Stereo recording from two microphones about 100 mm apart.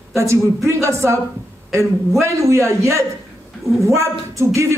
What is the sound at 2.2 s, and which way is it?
A man's voice, 30° right (ahead or behind).